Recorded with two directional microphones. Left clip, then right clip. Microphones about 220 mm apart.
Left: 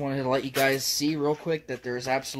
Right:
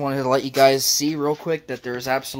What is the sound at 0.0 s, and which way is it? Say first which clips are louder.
Speech: right 6 dB; 15° right (ahead or behind).